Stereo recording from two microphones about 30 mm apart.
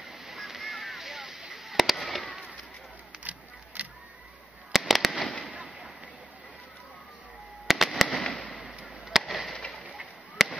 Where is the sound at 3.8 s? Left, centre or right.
Right.